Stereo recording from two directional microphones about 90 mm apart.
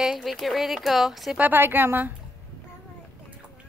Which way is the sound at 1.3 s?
20° right (ahead or behind).